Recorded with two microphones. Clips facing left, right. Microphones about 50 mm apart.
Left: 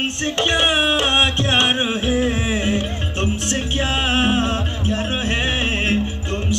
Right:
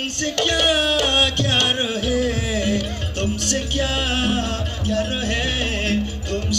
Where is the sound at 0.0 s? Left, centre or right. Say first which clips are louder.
Left 2 dB; left.